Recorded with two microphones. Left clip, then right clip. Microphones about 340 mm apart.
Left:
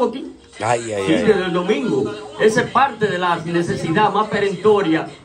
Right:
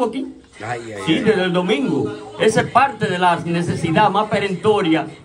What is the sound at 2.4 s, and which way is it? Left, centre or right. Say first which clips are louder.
A man's voice: even; centre.